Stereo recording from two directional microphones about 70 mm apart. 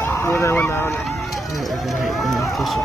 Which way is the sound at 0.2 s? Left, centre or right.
Left.